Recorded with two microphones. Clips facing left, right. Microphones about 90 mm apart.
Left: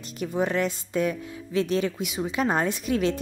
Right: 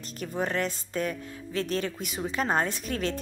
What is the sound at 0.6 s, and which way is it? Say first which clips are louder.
Speech: left 4 dB; 40° right (ahead or behind).